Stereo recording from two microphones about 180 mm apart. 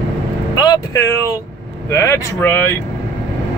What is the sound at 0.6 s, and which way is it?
Speech, 20° left (ahead or behind).